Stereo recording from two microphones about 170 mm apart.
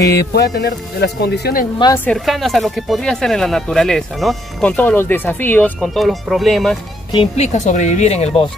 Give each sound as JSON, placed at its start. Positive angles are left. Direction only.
{"t": 0.1, "sound": "speech", "side_deg": 70}
{"t": 2.0, "sound": "speech", "side_deg": 0}
{"t": 5.8, "sound": "speech", "side_deg": 0}
{"t": 7.1, "sound": "speech", "side_deg": 35}